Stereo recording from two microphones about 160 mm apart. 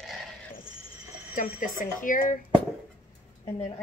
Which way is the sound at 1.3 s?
55° left (ahead or behind).